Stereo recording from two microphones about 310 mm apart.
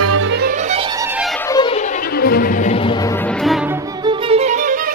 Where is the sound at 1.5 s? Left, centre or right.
Centre.